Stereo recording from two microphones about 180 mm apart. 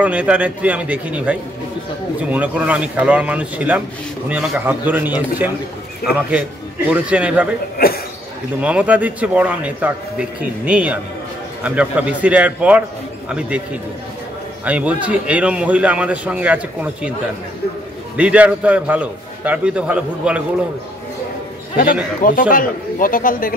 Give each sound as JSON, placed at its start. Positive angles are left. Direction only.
{"t": 0.0, "sound": "a man's voice", "side_deg": -5}
{"t": 6.9, "sound": "a man's voice", "side_deg": -5}
{"t": 7.7, "sound": "speech", "side_deg": 55}
{"t": 8.5, "sound": "a man's voice", "side_deg": -5}
{"t": 14.6, "sound": "a man's voice", "side_deg": -10}
{"t": 18.1, "sound": "a man's voice", "side_deg": -5}
{"t": 22.2, "sound": "speech", "side_deg": 50}